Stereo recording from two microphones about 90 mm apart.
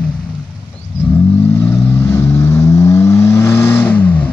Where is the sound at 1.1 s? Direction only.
25° left (ahead or behind).